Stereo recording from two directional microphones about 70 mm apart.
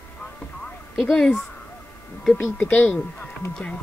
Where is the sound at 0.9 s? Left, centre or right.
Centre.